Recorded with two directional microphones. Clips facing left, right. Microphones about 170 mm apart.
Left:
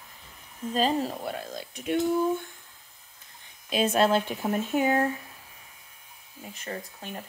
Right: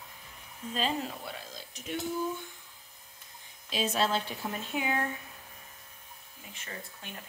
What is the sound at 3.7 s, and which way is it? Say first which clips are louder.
Speech: left 7 dB; 55° left (ahead or behind).